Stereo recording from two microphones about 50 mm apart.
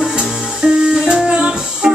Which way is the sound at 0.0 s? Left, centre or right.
Centre.